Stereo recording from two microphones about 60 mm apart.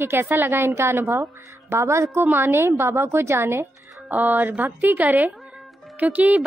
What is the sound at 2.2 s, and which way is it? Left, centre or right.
Speech, right.